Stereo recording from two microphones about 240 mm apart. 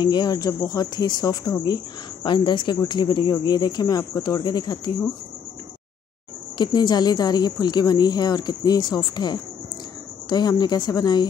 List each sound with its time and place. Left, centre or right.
0.0 s speech: centre
6.6 s speech: centre